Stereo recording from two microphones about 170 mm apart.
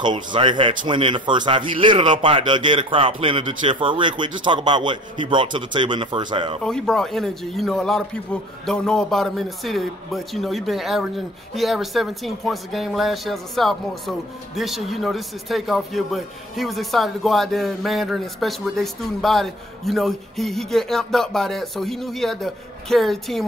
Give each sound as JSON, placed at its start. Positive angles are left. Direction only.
{"t": 0.0, "sound": "a man's voice", "side_deg": -25}
{"t": 6.6, "sound": "a man's voice", "side_deg": 5}